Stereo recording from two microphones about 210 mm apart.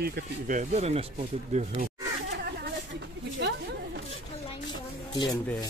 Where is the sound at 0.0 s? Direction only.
45° right (ahead or behind).